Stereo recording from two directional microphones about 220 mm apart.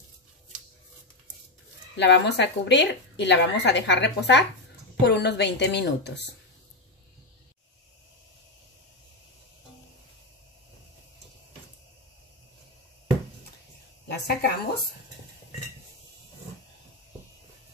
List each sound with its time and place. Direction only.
2.0 s a woman's voice: 55° left (ahead or behind)
14.1 s a woman's voice: 45° left (ahead or behind)